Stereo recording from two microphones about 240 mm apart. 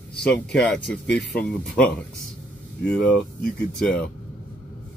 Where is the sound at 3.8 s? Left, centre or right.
Centre.